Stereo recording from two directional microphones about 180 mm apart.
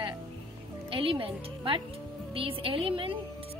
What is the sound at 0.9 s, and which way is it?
Speech, 30° right (ahead or behind).